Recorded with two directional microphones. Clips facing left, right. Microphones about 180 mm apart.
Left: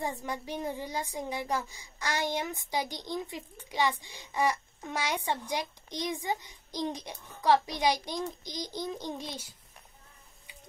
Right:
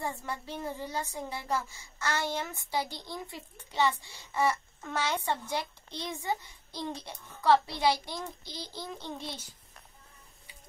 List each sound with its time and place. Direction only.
0.0 s a child's voice: 15° left (ahead or behind)